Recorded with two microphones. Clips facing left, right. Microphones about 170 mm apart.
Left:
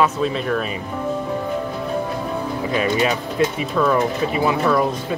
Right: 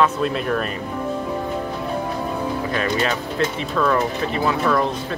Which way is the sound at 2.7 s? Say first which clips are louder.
Left 5 dB; 10° left (ahead or behind).